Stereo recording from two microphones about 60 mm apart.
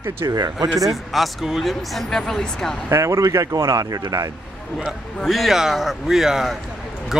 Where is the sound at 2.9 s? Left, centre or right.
Right.